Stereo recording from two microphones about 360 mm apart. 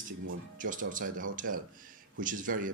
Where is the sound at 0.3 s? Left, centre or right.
Right.